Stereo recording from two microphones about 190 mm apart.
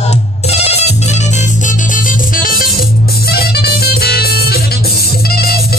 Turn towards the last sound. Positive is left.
turn(degrees=55)  # may be behind; listen again after turning